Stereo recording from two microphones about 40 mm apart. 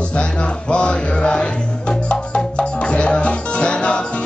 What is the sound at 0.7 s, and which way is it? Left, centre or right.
Music, left.